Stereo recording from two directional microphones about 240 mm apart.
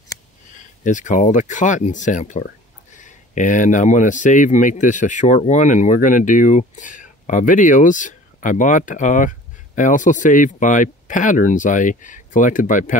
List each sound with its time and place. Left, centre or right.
0.8 s speech: left